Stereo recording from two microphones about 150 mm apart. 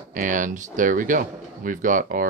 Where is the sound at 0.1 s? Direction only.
60° right (ahead or behind).